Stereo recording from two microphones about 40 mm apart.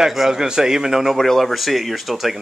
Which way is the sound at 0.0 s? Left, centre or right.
Centre.